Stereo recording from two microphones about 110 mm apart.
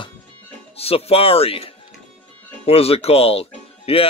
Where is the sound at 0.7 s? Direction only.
65° left (ahead or behind).